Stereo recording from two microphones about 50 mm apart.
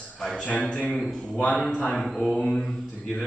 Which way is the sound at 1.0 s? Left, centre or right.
Centre.